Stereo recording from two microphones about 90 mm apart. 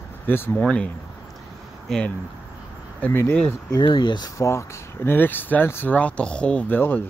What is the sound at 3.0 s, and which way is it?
Speech, 20° left (ahead or behind).